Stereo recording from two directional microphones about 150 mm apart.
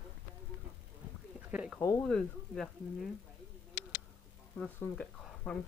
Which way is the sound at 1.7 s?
20° left (ahead or behind).